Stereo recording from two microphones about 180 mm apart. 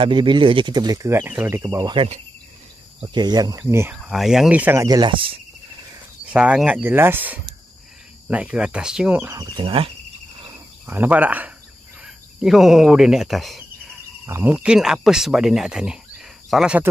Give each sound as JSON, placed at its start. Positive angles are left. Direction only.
{"t": 0.0, "sound": "speech", "side_deg": -25}
{"t": 3.6, "sound": "speech", "side_deg": -10}
{"t": 4.8, "sound": "speech", "side_deg": -25}
{"t": 6.3, "sound": "speech", "side_deg": -5}
{"t": 9.6, "sound": "speech", "side_deg": -30}
{"t": 10.9, "sound": "speech", "side_deg": -10}
{"t": 14.2, "sound": "speech", "side_deg": -10}